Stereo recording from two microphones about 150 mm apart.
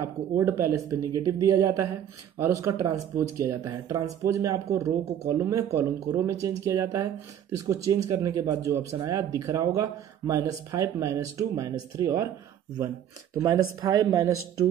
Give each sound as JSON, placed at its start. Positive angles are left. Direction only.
{"t": 0.0, "sound": "speech", "side_deg": -20}